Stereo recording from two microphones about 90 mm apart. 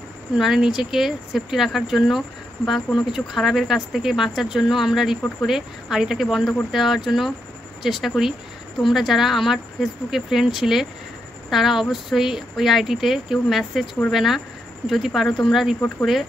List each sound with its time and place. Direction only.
0.4 s speech: 5° right (ahead or behind)